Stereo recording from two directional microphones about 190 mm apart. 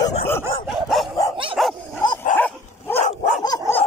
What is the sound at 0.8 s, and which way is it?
Dog, centre (ahead or behind).